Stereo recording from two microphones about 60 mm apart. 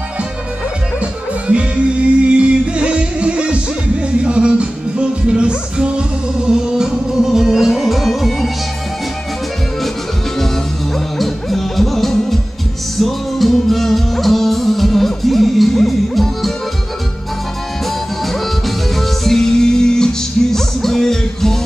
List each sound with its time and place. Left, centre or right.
2.2 s music: centre
11.1 s music: centre
18.9 s music: centre